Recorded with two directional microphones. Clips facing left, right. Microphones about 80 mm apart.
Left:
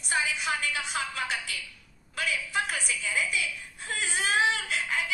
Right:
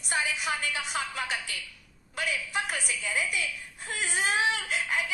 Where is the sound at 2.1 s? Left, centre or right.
Right.